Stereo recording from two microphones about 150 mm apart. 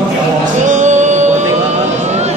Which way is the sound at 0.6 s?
55° right (ahead or behind).